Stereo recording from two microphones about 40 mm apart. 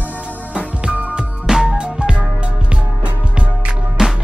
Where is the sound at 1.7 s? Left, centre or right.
Right.